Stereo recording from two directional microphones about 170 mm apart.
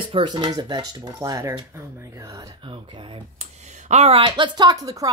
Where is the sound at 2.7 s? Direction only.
30° right (ahead or behind).